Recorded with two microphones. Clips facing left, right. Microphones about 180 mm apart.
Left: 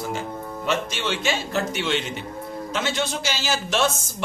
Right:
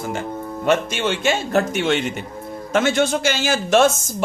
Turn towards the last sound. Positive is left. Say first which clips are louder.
# right 7 dB
turn(degrees=-50)  # may be behind; listen again after turning